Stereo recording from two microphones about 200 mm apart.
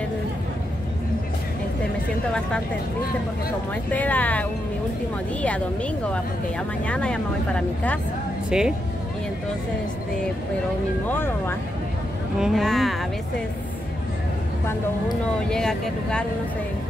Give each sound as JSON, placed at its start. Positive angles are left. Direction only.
{"t": 3.9, "sound": "speech", "side_deg": 10}
{"t": 6.9, "sound": "speech", "side_deg": 5}
{"t": 11.1, "sound": "speech", "side_deg": 10}
{"t": 12.4, "sound": "speech", "side_deg": 0}
{"t": 15.4, "sound": "speech", "side_deg": 5}